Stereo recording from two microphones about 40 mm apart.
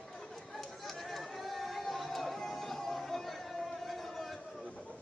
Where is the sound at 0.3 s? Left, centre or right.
Centre.